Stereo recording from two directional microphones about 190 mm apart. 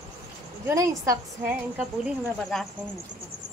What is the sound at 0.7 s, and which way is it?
Speech, 15° right (ahead or behind).